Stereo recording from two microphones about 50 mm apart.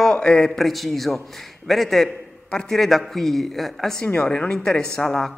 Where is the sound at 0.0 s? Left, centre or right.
Centre.